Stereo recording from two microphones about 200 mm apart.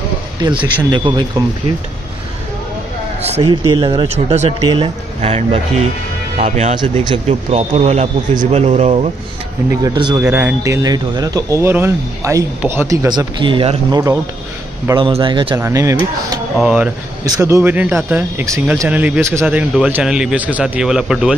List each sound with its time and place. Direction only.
0.4 s speech: 20° right (ahead or behind)
3.3 s a man's voice: 30° right (ahead or behind)
9.8 s speech: 20° right (ahead or behind)
16.5 s a man's voice: 5° right (ahead or behind)